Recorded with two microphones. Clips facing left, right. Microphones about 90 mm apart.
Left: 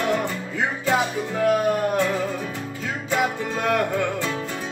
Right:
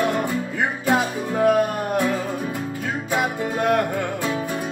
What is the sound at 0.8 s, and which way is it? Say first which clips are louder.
Music: right 1 dB; 15° right (ahead or behind).